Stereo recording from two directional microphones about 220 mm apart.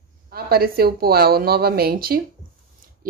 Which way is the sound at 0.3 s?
45° right (ahead or behind).